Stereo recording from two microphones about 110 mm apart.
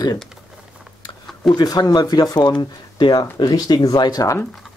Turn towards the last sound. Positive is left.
turn(degrees=35)  # may be behind; listen again after turning